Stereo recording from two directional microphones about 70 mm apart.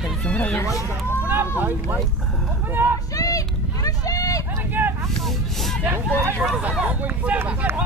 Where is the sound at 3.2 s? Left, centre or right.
Left.